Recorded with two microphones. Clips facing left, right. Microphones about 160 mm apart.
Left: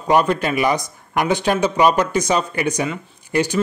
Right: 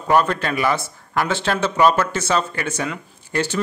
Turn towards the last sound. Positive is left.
turn(degrees=15)  # may be behind; listen again after turning